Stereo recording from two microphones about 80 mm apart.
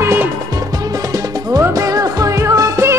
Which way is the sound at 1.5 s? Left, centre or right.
Right.